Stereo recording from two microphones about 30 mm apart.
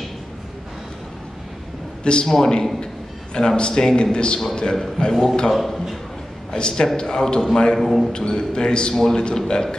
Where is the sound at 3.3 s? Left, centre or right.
Left.